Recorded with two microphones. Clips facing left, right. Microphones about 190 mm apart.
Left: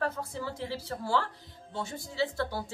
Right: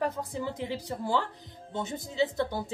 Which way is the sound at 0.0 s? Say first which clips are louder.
Right 2 dB; 15° right (ahead or behind).